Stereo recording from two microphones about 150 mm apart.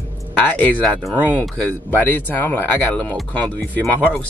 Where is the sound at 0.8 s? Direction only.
Centre (ahead or behind).